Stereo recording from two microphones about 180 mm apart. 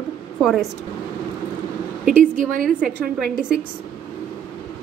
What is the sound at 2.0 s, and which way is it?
Speech, 45° right (ahead or behind).